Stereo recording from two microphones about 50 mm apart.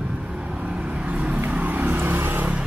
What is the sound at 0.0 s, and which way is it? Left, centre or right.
Vehicle, centre.